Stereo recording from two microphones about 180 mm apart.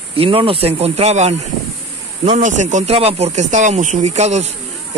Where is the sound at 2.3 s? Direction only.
40° right (ahead or behind).